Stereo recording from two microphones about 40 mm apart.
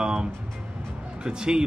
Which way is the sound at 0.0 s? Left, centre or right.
Centre.